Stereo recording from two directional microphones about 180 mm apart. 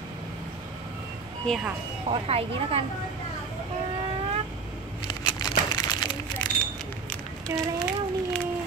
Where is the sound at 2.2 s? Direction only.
35° right (ahead or behind).